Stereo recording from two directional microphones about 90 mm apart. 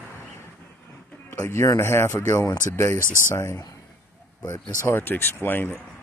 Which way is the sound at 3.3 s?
30° left (ahead or behind).